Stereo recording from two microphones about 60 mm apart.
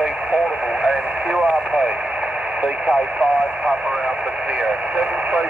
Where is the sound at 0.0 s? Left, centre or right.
Centre.